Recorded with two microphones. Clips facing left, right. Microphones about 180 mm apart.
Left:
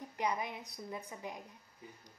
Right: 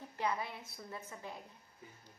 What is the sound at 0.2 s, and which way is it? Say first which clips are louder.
A woman's voice: left 1 dB; 15° left (ahead or behind).